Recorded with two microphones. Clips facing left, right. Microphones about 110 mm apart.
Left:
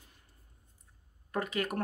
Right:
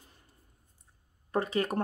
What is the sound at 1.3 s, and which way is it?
Speech, 30° right (ahead or behind).